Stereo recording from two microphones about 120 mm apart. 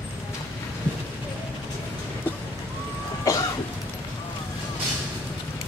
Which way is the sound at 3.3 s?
25° left (ahead or behind).